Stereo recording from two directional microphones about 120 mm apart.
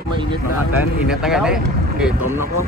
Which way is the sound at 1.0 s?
5° right (ahead or behind).